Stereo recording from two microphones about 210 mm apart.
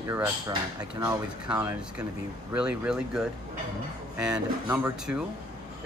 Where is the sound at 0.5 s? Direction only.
15° right (ahead or behind).